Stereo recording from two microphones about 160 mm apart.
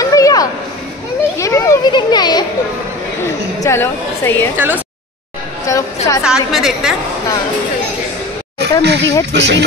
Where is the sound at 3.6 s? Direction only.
15° left (ahead or behind).